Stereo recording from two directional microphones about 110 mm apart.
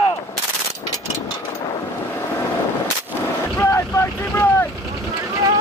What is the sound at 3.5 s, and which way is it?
Boat, 20° left (ahead or behind).